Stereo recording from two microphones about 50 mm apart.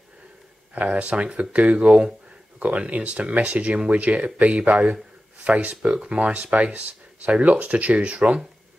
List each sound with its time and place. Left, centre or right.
0.7 s speech: right